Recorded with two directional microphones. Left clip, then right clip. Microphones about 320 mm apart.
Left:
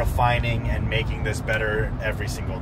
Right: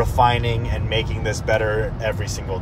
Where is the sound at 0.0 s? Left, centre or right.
Right.